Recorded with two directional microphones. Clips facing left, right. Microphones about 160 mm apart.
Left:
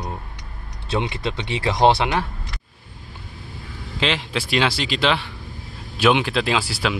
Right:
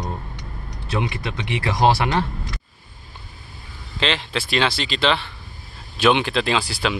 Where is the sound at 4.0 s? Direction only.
10° left (ahead or behind).